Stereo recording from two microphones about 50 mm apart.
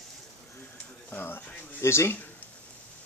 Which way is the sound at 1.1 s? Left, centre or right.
Left.